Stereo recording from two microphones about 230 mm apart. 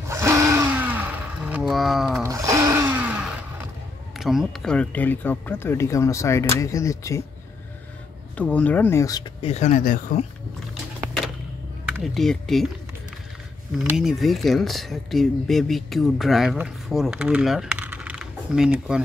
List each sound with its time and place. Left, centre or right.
0.1 s a sound: centre
2.2 s a sound: centre
4.2 s speech: centre
8.4 s speech: centre
9.5 s speech: left
12.0 s speech: centre
13.8 s speech: centre